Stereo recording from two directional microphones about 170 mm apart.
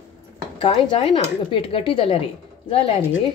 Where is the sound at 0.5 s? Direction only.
30° left (ahead or behind).